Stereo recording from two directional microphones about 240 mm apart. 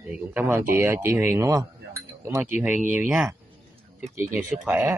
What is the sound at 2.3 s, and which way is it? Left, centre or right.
A man's voice, centre.